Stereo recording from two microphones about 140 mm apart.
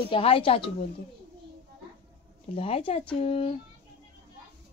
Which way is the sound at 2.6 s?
45° left (ahead or behind).